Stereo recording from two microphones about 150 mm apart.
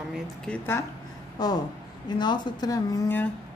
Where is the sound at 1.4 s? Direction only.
25° left (ahead or behind).